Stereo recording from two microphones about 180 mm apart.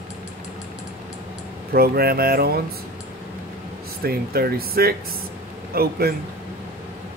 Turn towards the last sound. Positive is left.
turn(degrees=-60)  # may be behind; listen again after turning